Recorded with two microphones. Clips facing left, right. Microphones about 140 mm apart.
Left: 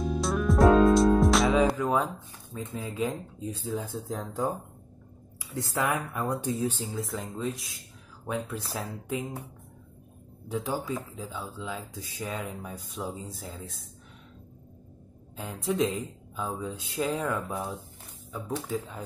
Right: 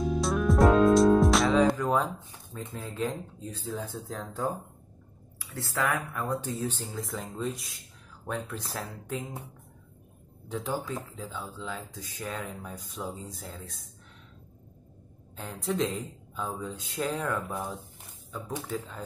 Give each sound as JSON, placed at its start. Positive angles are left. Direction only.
{"t": 0.0, "sound": "music", "side_deg": 0}
{"t": 2.5, "sound": "speech", "side_deg": 5}
{"t": 6.9, "sound": "speech", "side_deg": 0}
{"t": 10.5, "sound": "speech", "side_deg": 5}
{"t": 15.3, "sound": "speech", "side_deg": 10}